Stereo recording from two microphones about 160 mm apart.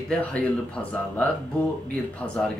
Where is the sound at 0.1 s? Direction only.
10° left (ahead or behind).